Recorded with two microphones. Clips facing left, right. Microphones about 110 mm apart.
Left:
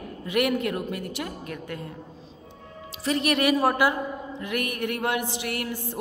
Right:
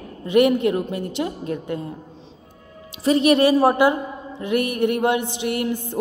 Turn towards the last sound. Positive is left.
turn(degrees=-20)  # may be behind; listen again after turning